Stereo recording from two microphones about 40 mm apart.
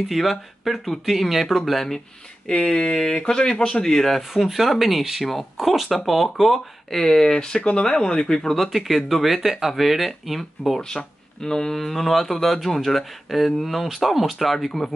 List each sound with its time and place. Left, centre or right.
0.1 s speech: centre
2.6 s speech: centre
4.3 s speech: centre
7.1 s speech: centre
8.5 s speech: centre
10.8 s speech: centre